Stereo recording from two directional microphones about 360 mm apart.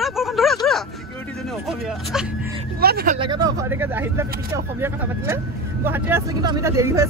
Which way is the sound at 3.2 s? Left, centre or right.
Centre.